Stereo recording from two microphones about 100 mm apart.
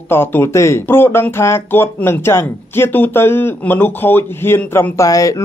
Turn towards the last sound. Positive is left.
turn(degrees=35)  # may be behind; listen again after turning